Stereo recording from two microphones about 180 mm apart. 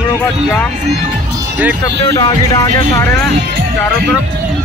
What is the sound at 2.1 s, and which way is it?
Speech, 25° left (ahead or behind).